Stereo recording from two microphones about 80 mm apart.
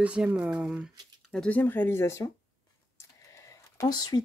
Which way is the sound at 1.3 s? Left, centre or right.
Centre.